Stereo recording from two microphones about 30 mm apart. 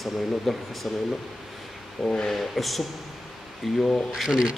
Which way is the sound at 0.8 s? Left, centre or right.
Centre.